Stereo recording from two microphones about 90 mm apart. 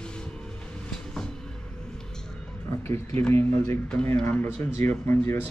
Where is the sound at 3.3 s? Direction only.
25° left (ahead or behind).